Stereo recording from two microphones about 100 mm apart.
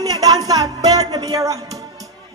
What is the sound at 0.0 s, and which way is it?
Music, 40° right (ahead or behind).